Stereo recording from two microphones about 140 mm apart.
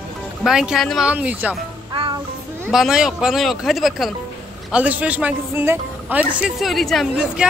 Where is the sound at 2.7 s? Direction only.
5° right (ahead or behind).